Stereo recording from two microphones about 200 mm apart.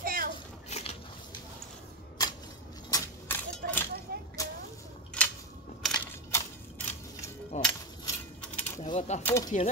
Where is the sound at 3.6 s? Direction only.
50° right (ahead or behind).